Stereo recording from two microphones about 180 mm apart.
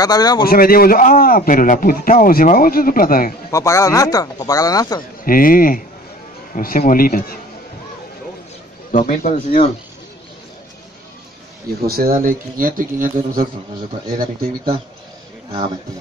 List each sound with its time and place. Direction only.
0.0 s speech: 20° left (ahead or behind)
0.5 s a man's voice: 55° left (ahead or behind)
3.5 s speech: 15° left (ahead or behind)
5.2 s a man's voice: 50° left (ahead or behind)
8.9 s a man's voice: 45° left (ahead or behind)
11.8 s speech: 55° right (ahead or behind)